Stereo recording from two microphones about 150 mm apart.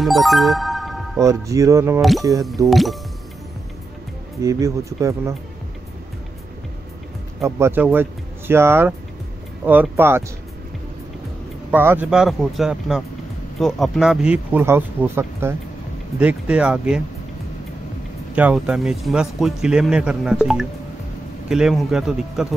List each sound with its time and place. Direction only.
0.0 s music: centre (ahead or behind)
1.2 s speech: 20° right (ahead or behind)
2.0 s speech: centre (ahead or behind)
4.4 s speech: 20° right (ahead or behind)
7.4 s speech: 15° right (ahead or behind)
11.7 s speech: 15° right (ahead or behind)
12.1 s speech: centre (ahead or behind)
18.3 s speech: 10° right (ahead or behind)